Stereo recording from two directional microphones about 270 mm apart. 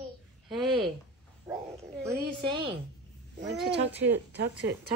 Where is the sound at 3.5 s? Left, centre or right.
Centre.